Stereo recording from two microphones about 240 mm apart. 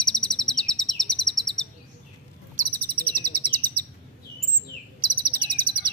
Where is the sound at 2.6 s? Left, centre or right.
Right.